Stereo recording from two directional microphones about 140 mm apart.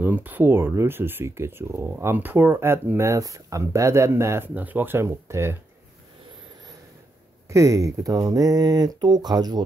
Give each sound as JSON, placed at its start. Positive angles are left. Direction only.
{"t": 0.0, "sound": "speech", "side_deg": -15}
{"t": 7.4, "sound": "speech", "side_deg": -20}